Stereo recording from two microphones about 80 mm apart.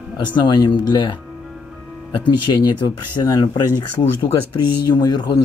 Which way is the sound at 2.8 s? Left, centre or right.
Left.